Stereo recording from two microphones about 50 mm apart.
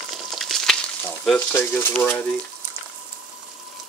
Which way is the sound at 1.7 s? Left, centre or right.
Left.